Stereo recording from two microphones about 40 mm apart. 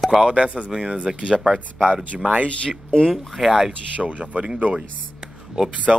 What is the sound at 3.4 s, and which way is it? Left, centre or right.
Speech, centre.